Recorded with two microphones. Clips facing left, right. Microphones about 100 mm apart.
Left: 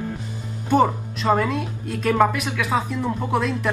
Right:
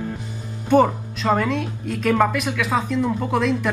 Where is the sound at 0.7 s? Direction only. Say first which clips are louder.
Right 2 dB; centre (ahead or behind).